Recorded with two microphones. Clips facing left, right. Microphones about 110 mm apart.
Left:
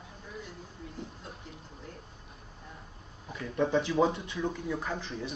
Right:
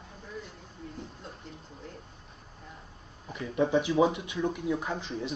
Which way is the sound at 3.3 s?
10° right (ahead or behind).